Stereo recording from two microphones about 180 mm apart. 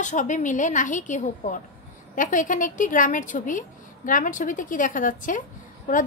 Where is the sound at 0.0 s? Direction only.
45° left (ahead or behind).